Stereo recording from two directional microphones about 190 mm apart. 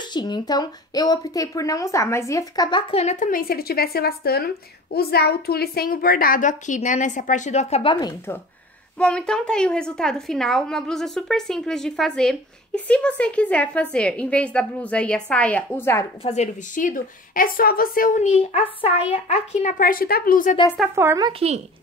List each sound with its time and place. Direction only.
0.1 s a woman's voice: 20° left (ahead or behind)
2.9 s a woman's voice: 35° left (ahead or behind)
8.9 s a woman's voice: 5° left (ahead or behind)
16.3 s a woman's voice: 40° left (ahead or behind)
18.5 s a woman's voice: 30° left (ahead or behind)
19.8 s a woman's voice: 50° left (ahead or behind)
20.9 s speech: 15° right (ahead or behind)
21.3 s speech: 30° right (ahead or behind)